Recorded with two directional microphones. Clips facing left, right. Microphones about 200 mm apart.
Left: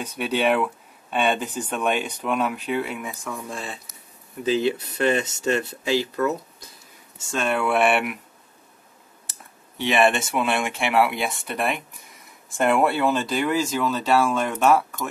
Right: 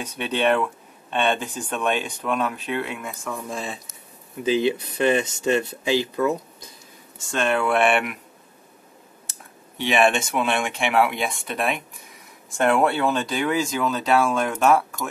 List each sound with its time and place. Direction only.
0.2 s speech: 10° left (ahead or behind)
4.6 s speech: 20° right (ahead or behind)
7.2 s speech: 5° left (ahead or behind)
9.3 s speech: centre (ahead or behind)